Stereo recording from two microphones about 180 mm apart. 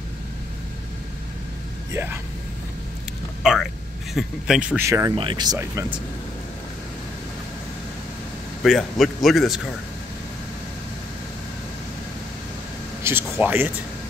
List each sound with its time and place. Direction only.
1.9 s speech: 15° right (ahead or behind)
4.1 s speech: 5° right (ahead or behind)
5.1 s speech: 25° right (ahead or behind)
8.6 s speech: centre (ahead or behind)
13.0 s speech: 10° right (ahead or behind)